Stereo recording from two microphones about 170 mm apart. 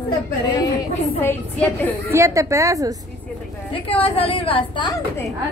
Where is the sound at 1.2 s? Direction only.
10° left (ahead or behind).